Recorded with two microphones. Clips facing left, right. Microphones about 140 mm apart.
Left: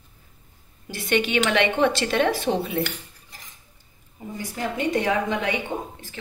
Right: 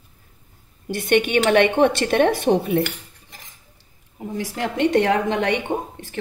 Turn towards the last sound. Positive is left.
turn(degrees=-65)  # may be behind; listen again after turning